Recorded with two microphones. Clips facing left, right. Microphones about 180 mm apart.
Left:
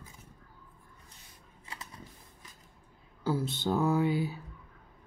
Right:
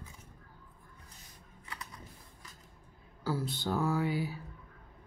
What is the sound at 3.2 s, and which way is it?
Speech, 20° left (ahead or behind).